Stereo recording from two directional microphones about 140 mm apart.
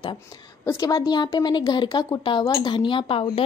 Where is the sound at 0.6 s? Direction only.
25° left (ahead or behind).